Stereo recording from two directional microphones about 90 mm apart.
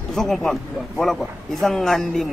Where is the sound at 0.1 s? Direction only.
5° left (ahead or behind).